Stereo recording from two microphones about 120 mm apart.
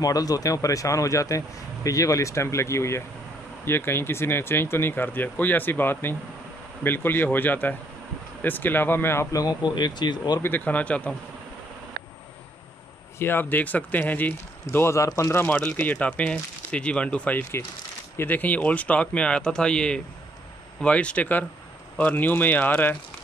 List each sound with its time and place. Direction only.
0.0 s a man's voice: 30° left (ahead or behind)
10.4 s speech: 15° left (ahead or behind)
13.2 s speech: 15° left (ahead or behind)